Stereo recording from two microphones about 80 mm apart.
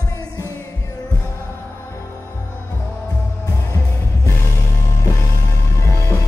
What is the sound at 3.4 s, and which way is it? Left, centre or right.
Music, left.